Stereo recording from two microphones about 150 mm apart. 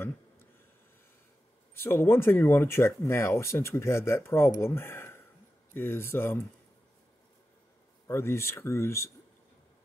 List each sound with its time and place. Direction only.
1.8 s speech: 15° left (ahead or behind)
8.1 s speech: 15° left (ahead or behind)